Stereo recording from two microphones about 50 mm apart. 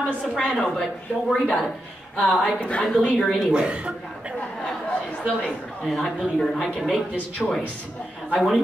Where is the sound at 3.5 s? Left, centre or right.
Right.